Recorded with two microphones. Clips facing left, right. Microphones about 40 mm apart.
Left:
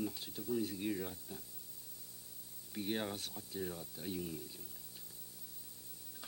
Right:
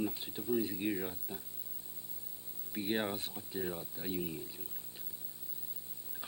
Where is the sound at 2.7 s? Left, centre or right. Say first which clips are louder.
Right 4 dB; right.